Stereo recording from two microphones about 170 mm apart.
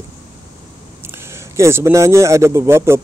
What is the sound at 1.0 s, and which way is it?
Speech, 15° right (ahead or behind).